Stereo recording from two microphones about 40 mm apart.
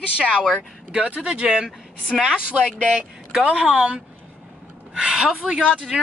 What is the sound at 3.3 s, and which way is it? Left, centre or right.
A woman's voice, right.